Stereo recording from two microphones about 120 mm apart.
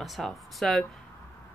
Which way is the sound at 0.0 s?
Centre (ahead or behind).